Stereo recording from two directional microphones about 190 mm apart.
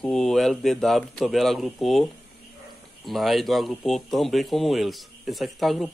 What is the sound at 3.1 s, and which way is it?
Speech, centre (ahead or behind).